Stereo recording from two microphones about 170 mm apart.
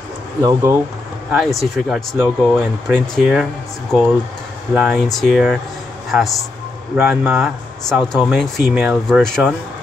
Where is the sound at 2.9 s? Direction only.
5° right (ahead or behind).